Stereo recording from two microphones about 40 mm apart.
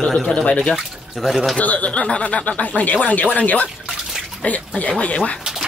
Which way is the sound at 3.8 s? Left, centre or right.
Centre.